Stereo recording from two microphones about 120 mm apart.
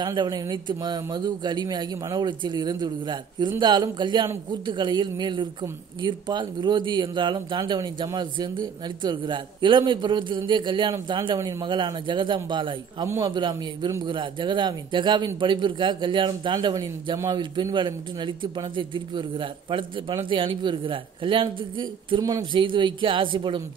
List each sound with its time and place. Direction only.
0.0 s a man's voice: 40° right (ahead or behind)
22.2 s speech: 35° right (ahead or behind)